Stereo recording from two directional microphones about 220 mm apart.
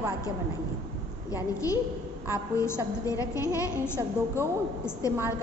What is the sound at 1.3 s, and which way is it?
A woman's voice, 15° left (ahead or behind).